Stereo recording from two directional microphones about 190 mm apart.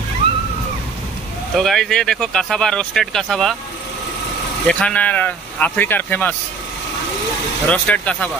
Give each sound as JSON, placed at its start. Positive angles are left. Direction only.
{"t": 1.6, "sound": "speech", "side_deg": 0}
{"t": 4.6, "sound": "speech", "side_deg": 5}
{"t": 7.6, "sound": "speech", "side_deg": 5}